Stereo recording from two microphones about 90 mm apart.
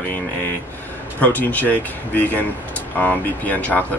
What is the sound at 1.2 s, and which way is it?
Speech, 15° left (ahead or behind).